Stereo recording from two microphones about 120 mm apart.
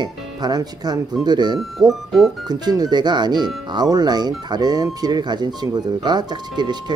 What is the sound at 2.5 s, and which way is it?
Speech, 35° right (ahead or behind).